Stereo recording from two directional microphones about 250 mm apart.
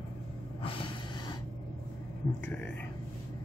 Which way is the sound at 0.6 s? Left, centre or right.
Left.